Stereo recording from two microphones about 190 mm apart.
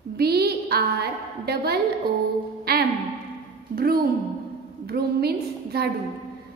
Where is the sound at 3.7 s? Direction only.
50° right (ahead or behind).